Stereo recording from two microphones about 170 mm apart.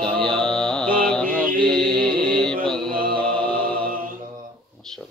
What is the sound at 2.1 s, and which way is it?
Mantra, 60° right (ahead or behind).